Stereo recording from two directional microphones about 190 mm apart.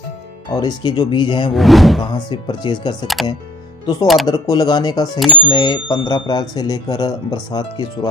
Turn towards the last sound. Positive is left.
turn(degrees=20)  # may be behind; listen again after turning